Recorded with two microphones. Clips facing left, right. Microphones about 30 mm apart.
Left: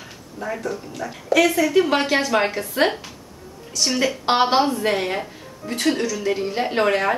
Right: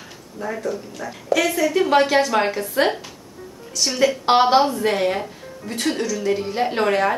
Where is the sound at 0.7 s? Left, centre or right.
Centre.